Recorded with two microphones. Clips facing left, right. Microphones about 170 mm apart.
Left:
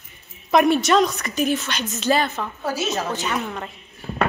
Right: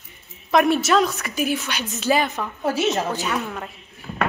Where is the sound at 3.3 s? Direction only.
Centre (ahead or behind).